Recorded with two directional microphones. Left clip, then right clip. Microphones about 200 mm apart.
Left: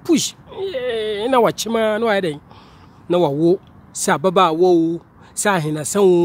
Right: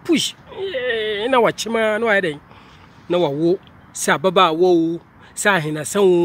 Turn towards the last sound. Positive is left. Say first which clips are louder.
# left 1 dB
turn(degrees=5)  # may be behind; listen again after turning